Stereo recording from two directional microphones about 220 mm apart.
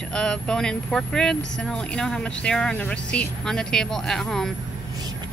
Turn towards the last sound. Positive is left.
turn(degrees=0)  # may be behind; listen again after turning